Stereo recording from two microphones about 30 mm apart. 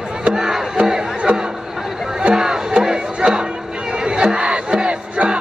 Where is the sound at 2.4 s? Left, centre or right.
Centre.